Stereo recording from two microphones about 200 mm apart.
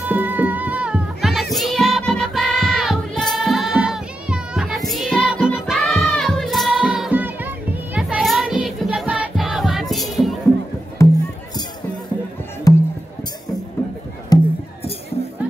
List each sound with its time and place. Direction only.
0.1 s music: 10° right (ahead or behind)
11.0 s music: 15° left (ahead or behind)
12.7 s music: 15° left (ahead or behind)
14.3 s music: 20° left (ahead or behind)